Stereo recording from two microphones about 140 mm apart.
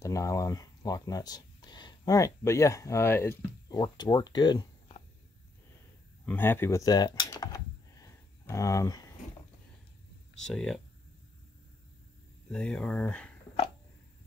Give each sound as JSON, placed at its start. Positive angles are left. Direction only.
{"t": 0.0, "sound": "speech", "side_deg": 20}
{"t": 3.6, "sound": "speech", "side_deg": 30}
{"t": 6.2, "sound": "speech", "side_deg": 15}
{"t": 6.8, "sound": "computer keyboard", "side_deg": 30}
{"t": 10.3, "sound": "speech", "side_deg": 5}
{"t": 12.4, "sound": "speech", "side_deg": 5}